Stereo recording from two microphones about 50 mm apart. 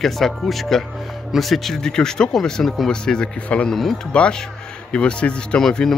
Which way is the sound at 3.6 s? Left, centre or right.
Centre.